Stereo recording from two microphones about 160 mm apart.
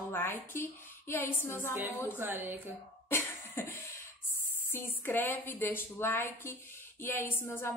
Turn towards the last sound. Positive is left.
turn(degrees=15)  # may be behind; listen again after turning